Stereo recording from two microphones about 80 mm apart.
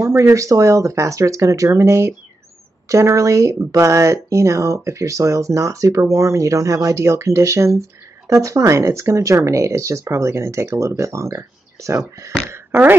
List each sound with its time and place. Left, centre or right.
0.0 s speech: right
12.4 s speech: right